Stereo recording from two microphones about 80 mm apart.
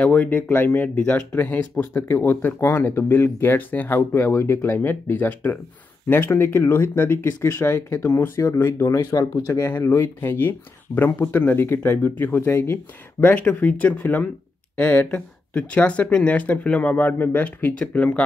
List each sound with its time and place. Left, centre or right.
0.0 s speech: centre; by 9.3 s left
9.7 s speech: left